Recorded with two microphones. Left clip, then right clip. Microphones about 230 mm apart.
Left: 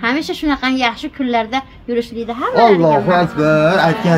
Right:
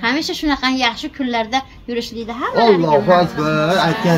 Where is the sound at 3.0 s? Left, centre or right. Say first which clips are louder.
Even; left.